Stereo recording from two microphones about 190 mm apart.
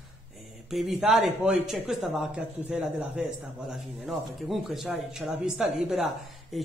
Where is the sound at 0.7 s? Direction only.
Centre (ahead or behind).